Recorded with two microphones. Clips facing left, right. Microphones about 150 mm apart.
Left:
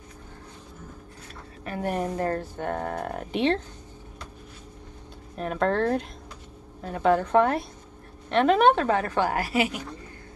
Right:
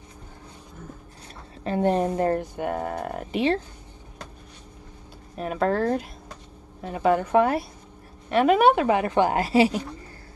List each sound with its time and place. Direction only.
1.6 s speech: 25° right (ahead or behind); by 3.6 s centre (ahead or behind)
5.4 s a woman's voice: 5° right (ahead or behind); by 9.8 s 30° right (ahead or behind)